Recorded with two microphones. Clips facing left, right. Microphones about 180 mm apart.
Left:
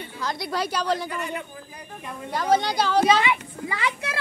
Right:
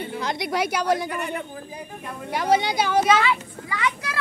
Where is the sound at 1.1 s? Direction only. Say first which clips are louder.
Right 2 dB; 60° right (ahead or behind).